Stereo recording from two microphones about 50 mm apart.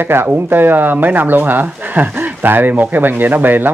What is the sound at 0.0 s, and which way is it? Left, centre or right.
Speech, right.